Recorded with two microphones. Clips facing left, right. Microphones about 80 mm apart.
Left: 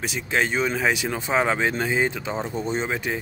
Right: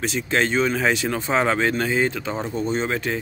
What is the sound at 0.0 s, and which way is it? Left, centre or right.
Speech, centre.